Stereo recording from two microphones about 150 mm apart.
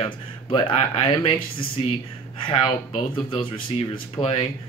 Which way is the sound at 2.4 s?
35° left (ahead or behind).